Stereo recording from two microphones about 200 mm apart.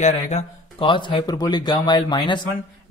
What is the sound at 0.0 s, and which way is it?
Speech, 35° left (ahead or behind).